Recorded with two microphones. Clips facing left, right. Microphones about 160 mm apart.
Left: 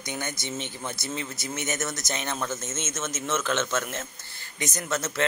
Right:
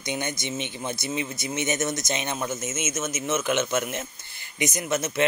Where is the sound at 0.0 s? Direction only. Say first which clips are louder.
Right 4 dB; 20° right (ahead or behind).